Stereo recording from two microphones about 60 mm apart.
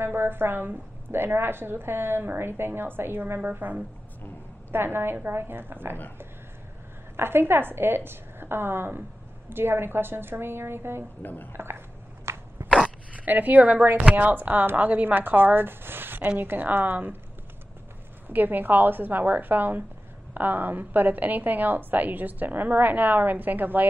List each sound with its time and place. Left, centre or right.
0.0 s a woman's voice: right
4.6 s a woman's voice: right
7.2 s a woman's voice: right
12.3 s dog: right
12.8 s a woman's voice: right
18.3 s a woman's voice: right